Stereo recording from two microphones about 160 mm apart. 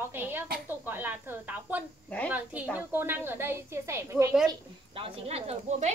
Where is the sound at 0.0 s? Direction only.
10° right (ahead or behind).